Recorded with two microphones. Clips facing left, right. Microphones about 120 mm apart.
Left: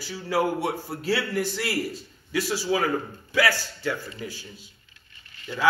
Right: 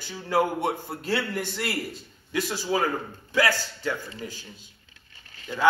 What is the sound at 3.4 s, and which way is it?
A man's voice, 10° left (ahead or behind).